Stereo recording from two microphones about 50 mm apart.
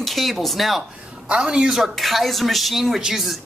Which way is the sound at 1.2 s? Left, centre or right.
Centre.